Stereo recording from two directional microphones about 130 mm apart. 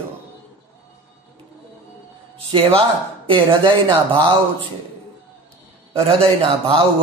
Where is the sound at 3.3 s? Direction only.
35° right (ahead or behind).